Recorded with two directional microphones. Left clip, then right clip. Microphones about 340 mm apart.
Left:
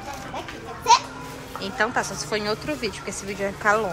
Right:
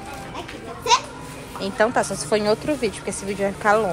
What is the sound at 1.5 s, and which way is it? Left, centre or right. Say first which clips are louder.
A woman's voice: right 4 dB; centre.